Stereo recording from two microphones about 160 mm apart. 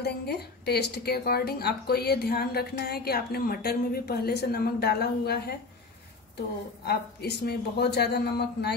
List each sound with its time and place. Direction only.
0.0 s a woman's voice: 90° left
6.9 s speech: 85° left